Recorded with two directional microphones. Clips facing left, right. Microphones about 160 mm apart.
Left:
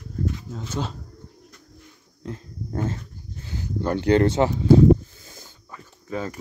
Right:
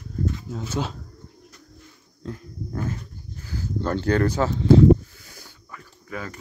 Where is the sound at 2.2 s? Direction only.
25° left (ahead or behind).